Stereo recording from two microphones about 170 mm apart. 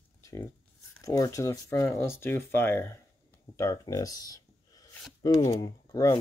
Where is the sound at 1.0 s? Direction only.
20° left (ahead or behind).